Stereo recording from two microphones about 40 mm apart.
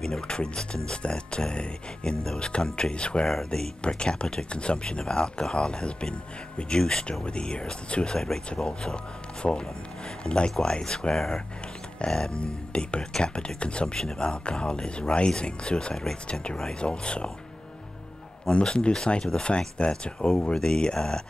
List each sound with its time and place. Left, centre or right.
0.0 s speech: centre
12.4 s speech: left
18.5 s speech: left